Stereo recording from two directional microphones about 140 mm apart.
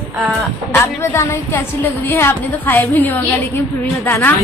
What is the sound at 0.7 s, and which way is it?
A woman's voice, 20° left (ahead or behind).